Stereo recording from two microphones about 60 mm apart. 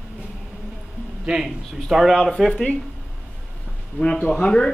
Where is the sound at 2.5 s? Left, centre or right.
Centre.